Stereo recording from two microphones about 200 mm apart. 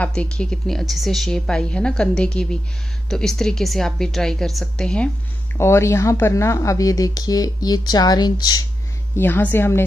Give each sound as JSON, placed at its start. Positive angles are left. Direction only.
{"t": 0.0, "sound": "a woman's voice", "side_deg": 5}